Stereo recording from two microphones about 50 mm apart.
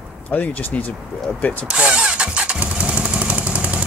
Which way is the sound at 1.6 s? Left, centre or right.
Centre.